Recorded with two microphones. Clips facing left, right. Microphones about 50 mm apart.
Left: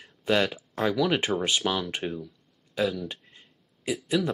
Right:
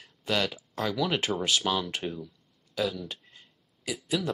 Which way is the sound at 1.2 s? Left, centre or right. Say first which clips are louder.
Left 2 dB; left.